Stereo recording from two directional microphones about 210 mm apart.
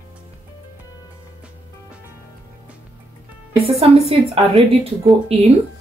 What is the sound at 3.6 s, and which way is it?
A woman's voice, 30° right (ahead or behind).